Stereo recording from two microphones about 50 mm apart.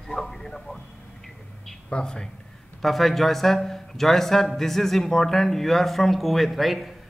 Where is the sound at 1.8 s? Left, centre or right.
Centre.